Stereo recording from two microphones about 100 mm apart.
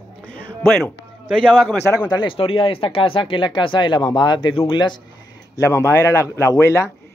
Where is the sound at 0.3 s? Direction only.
15° left (ahead or behind).